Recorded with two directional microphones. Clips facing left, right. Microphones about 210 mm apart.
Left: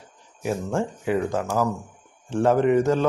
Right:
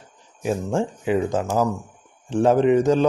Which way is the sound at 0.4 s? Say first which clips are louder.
Right 2 dB; 20° right (ahead or behind).